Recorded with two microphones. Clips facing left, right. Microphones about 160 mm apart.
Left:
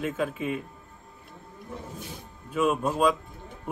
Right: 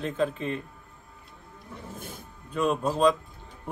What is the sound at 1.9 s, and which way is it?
Music, 50° right (ahead or behind).